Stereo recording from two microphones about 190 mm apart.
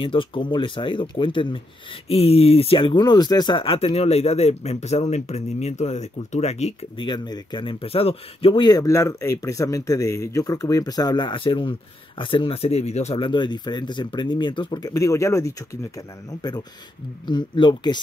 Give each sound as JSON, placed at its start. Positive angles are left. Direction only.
{"t": 0.0, "sound": "speech", "side_deg": 25}